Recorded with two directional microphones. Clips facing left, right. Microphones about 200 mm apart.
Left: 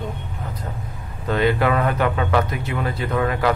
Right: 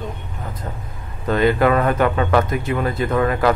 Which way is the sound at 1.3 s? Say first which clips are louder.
Right 3 dB; 45° right (ahead or behind).